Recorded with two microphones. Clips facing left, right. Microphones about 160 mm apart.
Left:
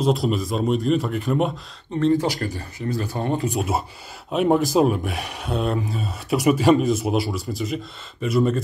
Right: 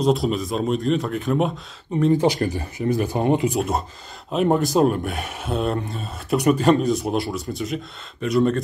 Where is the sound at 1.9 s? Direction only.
15° right (ahead or behind).